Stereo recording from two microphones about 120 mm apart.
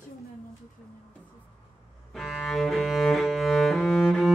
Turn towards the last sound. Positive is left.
turn(degrees=0)  # may be behind; listen again after turning